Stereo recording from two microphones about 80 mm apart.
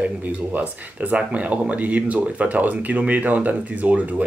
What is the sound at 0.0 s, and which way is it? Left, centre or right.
Speech, centre.